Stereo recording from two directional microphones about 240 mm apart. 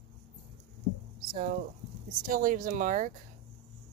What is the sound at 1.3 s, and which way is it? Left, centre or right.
Speech, right.